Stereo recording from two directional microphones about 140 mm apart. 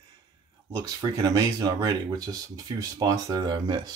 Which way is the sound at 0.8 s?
25° right (ahead or behind).